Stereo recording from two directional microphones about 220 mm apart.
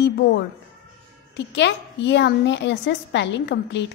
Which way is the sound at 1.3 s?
55° left (ahead or behind).